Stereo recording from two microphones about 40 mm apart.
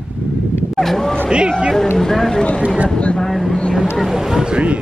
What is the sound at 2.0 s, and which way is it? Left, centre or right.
Speech, centre.